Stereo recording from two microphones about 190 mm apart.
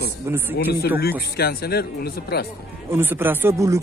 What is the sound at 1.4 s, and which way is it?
Speech, 55° left (ahead or behind).